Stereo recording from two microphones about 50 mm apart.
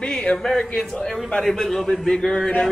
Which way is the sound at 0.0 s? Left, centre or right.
Centre.